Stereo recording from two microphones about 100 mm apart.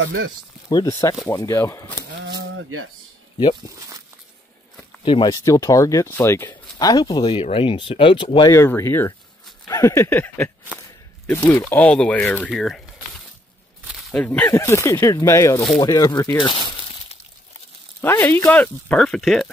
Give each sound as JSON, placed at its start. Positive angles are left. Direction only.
{"t": 0.7, "sound": "speech", "side_deg": 40}
{"t": 5.0, "sound": "speech", "side_deg": 55}
{"t": 5.3, "sound": "speech", "side_deg": 35}
{"t": 6.8, "sound": "speech", "side_deg": 40}
{"t": 7.4, "sound": "speech", "side_deg": 65}
{"t": 8.5, "sound": "speech", "side_deg": 25}
{"t": 11.5, "sound": "speech", "side_deg": 25}
{"t": 11.9, "sound": "speech", "side_deg": 10}
{"t": 14.1, "sound": "speech", "side_deg": 15}
{"t": 14.5, "sound": "speech", "side_deg": 25}
{"t": 16.3, "sound": "speech", "side_deg": 55}
{"t": 18.0, "sound": "speech", "side_deg": 20}